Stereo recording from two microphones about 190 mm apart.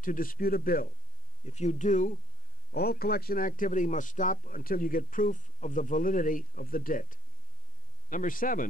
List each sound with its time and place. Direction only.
0.0 s a man's voice: 45° left (ahead or behind)
1.4 s speech: 35° left (ahead or behind)
2.7 s a man's voice: 55° left (ahead or behind)